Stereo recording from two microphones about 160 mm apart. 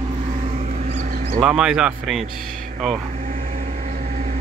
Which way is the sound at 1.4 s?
5° right (ahead or behind).